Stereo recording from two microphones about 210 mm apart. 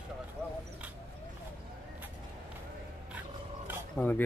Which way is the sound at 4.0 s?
Centre (ahead or behind).